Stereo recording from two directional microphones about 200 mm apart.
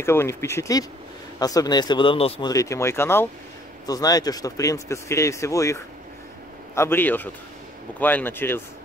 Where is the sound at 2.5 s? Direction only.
15° left (ahead or behind).